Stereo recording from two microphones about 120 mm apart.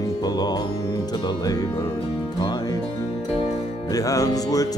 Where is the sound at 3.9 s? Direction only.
30° left (ahead or behind).